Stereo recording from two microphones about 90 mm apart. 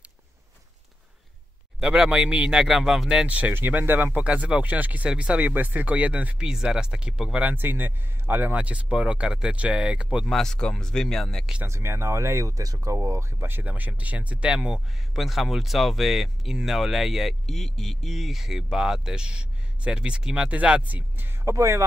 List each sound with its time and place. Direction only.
1.8 s speech: 10° right (ahead or behind)
3.3 s speech: 15° right (ahead or behind)
7.3 s speech: 20° right (ahead or behind)
10.2 s speech: 5° left (ahead or behind)
11.6 s speech: 30° right (ahead or behind)
21.5 s speech: 35° right (ahead or behind)